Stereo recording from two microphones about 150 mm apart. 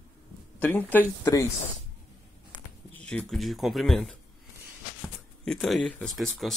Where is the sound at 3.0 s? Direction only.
10° left (ahead or behind).